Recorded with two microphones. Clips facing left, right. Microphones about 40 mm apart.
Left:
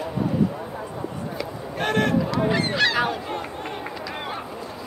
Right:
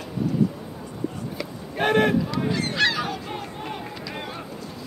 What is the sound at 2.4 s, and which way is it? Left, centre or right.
Goose, left.